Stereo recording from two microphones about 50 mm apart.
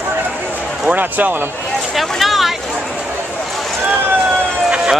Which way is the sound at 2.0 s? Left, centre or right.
Centre.